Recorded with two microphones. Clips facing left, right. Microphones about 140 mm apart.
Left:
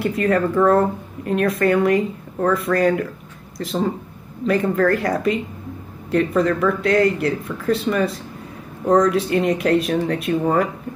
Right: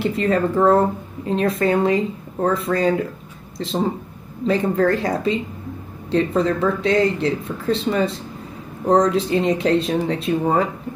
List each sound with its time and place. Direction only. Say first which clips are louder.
0.0 s speech: even; 25° right (ahead or behind)